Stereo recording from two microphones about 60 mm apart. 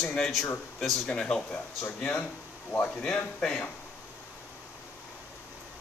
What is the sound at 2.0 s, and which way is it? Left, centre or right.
Speech, left.